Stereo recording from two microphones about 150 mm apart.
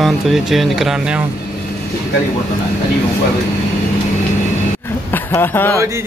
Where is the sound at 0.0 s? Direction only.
Centre (ahead or behind).